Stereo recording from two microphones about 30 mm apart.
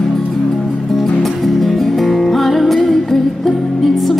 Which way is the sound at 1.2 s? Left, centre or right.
Centre.